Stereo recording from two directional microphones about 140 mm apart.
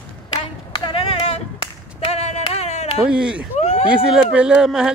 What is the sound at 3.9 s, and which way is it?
A man's voice, 5° right (ahead or behind).